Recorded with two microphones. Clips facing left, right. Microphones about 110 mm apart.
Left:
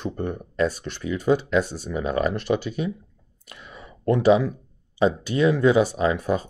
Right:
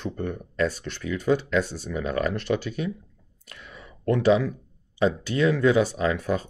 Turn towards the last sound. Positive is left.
turn(degrees=15)  # may be behind; listen again after turning